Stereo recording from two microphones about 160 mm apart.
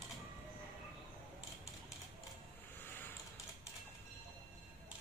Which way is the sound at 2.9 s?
10° left (ahead or behind).